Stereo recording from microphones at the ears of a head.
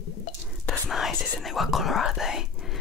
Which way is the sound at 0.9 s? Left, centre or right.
Left.